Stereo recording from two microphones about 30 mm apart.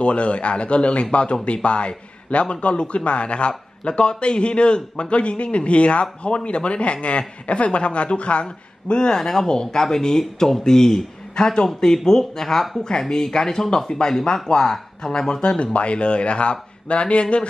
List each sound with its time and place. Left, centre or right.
0.0 s a man's voice: left
8.5 s speech: left
15.6 s a man's voice: left